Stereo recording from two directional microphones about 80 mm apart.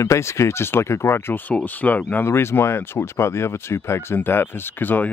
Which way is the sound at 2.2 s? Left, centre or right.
Left.